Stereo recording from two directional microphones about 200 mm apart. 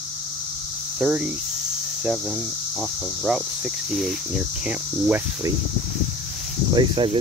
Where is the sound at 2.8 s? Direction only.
5° right (ahead or behind).